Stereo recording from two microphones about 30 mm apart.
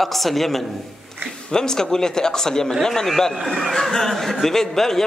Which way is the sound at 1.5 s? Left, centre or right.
Left.